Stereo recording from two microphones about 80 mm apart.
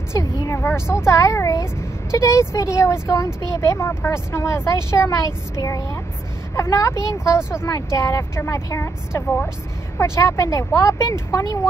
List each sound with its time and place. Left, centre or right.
0.1 s speech: left